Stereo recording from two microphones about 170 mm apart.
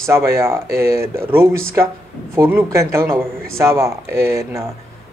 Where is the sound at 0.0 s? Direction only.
15° right (ahead or behind).